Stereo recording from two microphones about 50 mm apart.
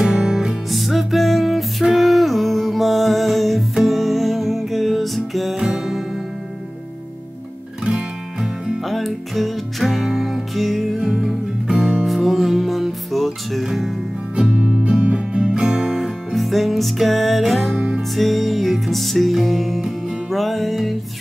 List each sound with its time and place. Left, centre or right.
0.0 s music: centre
0.7 s music: centre
7.8 s music: centre
8.8 s music: centre
11.0 s music: centre
13.7 s music: centre
14.3 s music: right; by 17.7 s centre
17.7 s music: right
18.1 s music: centre